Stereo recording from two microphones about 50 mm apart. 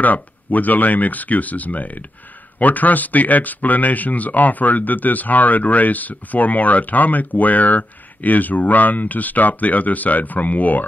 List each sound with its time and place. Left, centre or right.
0.0 s speech: left